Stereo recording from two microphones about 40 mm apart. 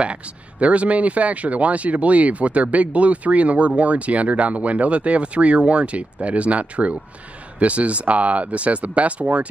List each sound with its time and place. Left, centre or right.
0.0 s speech: right